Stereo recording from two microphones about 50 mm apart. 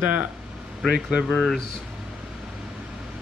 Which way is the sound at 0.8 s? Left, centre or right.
Centre.